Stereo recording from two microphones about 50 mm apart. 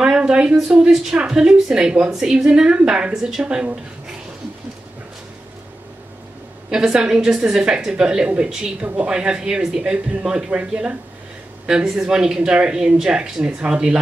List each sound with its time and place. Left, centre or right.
0.0 s a sound: centre
0.6 s speech: centre
6.7 s speech: centre
11.6 s speech: centre